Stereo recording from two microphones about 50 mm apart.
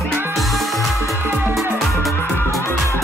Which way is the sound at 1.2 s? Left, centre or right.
Right.